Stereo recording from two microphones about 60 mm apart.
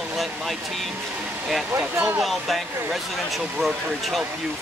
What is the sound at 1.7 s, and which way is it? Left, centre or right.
Speech, right.